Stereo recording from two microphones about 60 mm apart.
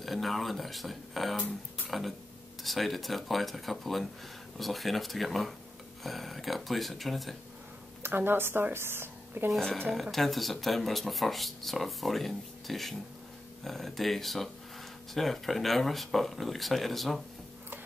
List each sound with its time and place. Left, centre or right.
0.0 s speech: centre
8.0 s speech: right
10.1 s speech: centre